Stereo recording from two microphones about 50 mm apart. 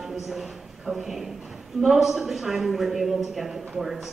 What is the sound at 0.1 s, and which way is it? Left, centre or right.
A man's voice, centre.